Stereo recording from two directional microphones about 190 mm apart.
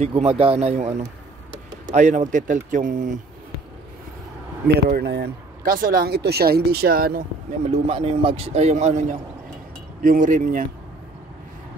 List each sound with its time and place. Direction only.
0.0 s a man's voice: 30° right (ahead or behind)
4.8 s speech: 55° right (ahead or behind)
7.7 s a man's voice: 30° right (ahead or behind)
10.0 s speech: 45° right (ahead or behind)